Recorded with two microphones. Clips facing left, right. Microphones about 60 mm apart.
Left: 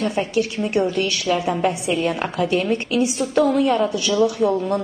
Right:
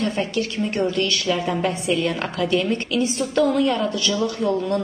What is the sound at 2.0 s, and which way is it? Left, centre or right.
A woman's voice, left.